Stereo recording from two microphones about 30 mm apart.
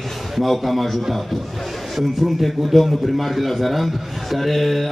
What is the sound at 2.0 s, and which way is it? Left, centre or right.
A man's voice, centre.